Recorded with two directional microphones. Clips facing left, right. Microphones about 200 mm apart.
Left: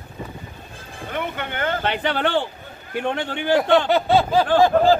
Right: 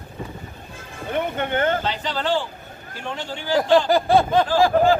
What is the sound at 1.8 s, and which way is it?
Speech, 60° left (ahead or behind).